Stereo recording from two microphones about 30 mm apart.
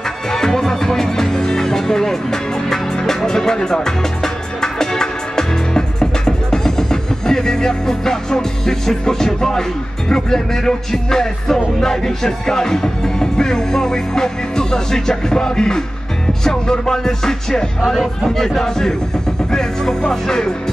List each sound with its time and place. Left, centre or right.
0.3 s music: centre